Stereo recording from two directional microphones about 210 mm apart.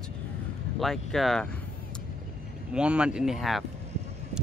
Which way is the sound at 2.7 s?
5° right (ahead or behind).